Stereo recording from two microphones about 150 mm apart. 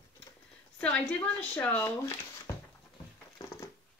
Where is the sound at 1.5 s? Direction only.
10° left (ahead or behind).